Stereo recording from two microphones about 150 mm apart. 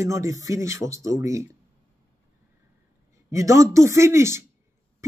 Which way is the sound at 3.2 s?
20° right (ahead or behind).